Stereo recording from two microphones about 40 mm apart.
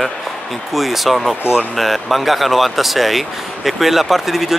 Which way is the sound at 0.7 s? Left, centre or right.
Centre.